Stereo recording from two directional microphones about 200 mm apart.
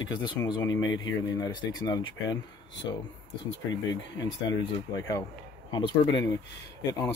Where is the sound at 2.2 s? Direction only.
65° left (ahead or behind).